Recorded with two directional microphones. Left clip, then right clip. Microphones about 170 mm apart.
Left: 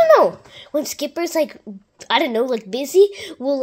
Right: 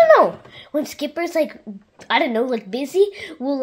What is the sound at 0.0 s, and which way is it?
A woman's voice, 50° left (ahead or behind).